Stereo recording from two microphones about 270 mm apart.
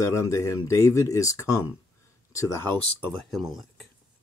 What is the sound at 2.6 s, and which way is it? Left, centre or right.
Speech, centre.